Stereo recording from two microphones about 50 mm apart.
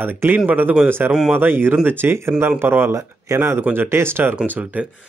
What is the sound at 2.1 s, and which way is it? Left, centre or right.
Speech, right.